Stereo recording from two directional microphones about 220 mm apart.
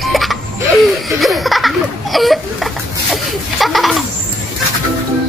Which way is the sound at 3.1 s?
Centre (ahead or behind).